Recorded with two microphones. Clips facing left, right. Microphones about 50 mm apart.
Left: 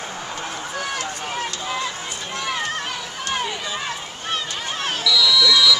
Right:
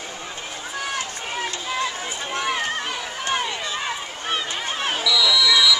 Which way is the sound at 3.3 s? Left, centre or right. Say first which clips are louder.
Even; centre.